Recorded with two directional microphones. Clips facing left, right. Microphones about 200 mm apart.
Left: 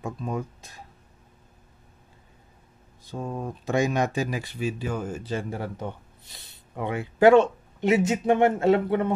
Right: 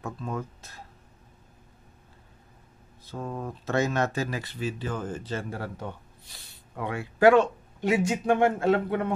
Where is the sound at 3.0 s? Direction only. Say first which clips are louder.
Left 2 dB; 15° left (ahead or behind).